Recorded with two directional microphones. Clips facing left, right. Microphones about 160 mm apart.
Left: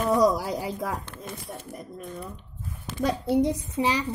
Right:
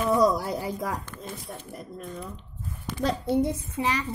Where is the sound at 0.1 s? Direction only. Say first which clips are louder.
Left 1 dB; 15° left (ahead or behind).